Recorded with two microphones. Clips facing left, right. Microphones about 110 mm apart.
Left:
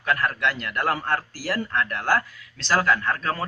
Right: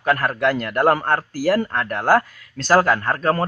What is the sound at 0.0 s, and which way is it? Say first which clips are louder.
Speech: right 5 dB; 45° right (ahead or behind).